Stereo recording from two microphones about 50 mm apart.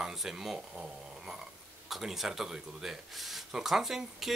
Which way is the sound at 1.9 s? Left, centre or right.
Centre.